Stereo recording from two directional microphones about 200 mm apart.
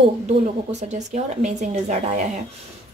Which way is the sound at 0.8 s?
35° right (ahead or behind).